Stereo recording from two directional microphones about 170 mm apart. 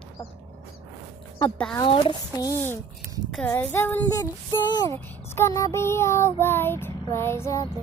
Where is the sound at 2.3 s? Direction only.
15° left (ahead or behind).